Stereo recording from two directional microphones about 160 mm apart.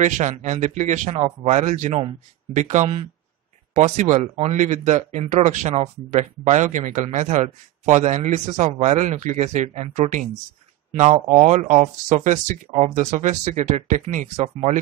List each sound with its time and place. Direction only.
0.0 s speech: 50° right (ahead or behind)